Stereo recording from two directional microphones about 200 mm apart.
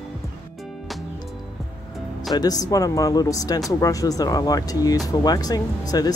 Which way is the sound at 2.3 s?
20° left (ahead or behind).